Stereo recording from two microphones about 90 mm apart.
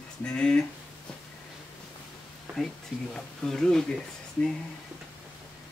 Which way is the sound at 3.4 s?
5° left (ahead or behind).